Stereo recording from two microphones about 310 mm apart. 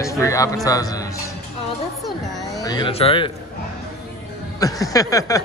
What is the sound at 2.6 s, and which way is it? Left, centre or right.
Speech, centre.